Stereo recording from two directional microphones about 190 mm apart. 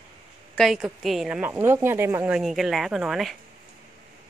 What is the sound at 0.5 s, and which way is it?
A woman's voice, centre (ahead or behind).